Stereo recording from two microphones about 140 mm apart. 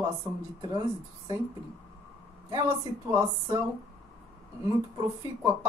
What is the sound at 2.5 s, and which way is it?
Speech, 25° right (ahead or behind).